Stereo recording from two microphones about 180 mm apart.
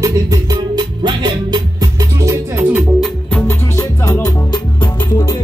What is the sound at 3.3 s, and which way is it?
Music, 15° left (ahead or behind).